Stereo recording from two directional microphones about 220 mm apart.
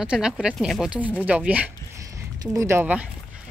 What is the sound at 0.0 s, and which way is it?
Speech, 5° right (ahead or behind).